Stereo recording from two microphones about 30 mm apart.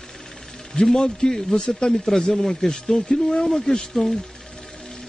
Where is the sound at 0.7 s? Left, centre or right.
Centre.